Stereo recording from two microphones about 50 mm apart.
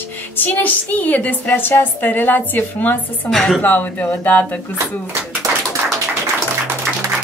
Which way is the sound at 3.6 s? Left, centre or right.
Left.